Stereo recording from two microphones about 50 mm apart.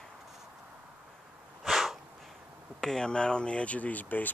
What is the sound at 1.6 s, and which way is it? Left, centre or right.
Sneeze, centre.